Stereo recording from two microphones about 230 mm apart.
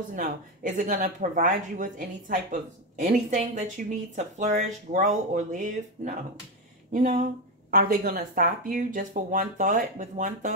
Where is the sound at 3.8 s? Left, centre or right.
Right.